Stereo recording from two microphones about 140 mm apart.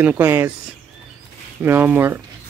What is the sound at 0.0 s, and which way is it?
Speech, 15° right (ahead or behind).